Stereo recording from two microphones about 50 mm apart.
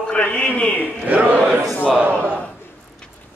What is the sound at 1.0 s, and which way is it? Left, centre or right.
Choir, right.